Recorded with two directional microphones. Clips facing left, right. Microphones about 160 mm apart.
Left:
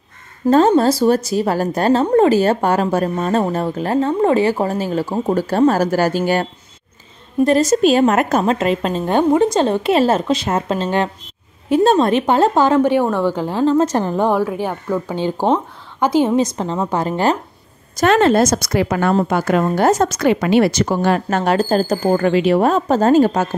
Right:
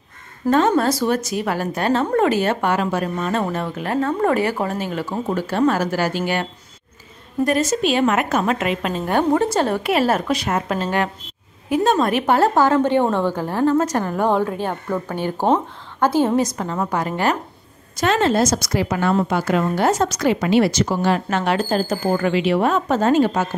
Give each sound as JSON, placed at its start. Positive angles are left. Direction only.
{"t": 0.5, "sound": "a woman's voice", "side_deg": 30}
{"t": 7.4, "sound": "a woman's voice", "side_deg": 35}
{"t": 14.3, "sound": "a woman's voice", "side_deg": 10}
{"t": 15.1, "sound": "a woman's voice", "side_deg": 20}
{"t": 17.9, "sound": "a woman's voice", "side_deg": 55}